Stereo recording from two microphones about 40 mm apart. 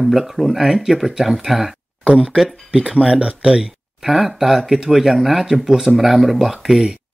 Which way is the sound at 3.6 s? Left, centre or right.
Centre.